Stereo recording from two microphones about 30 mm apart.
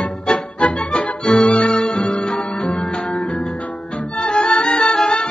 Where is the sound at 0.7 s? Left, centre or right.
Left.